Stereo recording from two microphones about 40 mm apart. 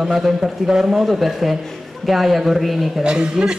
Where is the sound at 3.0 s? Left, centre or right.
Centre.